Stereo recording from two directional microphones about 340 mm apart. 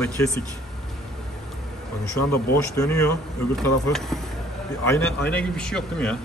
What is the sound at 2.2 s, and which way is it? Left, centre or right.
Speech, left.